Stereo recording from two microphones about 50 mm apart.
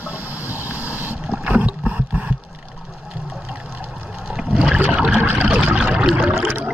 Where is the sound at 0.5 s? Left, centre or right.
Right.